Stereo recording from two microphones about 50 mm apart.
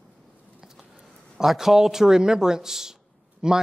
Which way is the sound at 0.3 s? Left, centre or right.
Right.